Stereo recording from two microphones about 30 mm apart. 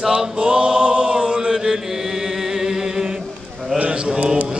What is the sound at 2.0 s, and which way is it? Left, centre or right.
Chant, centre.